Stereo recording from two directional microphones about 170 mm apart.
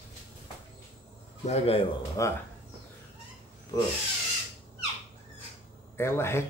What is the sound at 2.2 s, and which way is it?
Speech, 20° left (ahead or behind).